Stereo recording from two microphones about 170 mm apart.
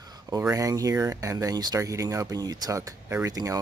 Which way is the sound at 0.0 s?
25° right (ahead or behind).